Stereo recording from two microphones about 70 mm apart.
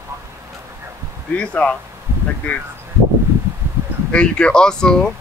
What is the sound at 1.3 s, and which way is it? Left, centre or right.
Speech, centre.